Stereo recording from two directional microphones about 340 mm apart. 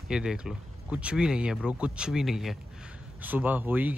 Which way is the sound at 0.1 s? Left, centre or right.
Centre.